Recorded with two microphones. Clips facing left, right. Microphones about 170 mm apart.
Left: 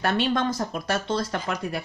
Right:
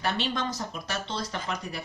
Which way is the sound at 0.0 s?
55° left (ahead or behind).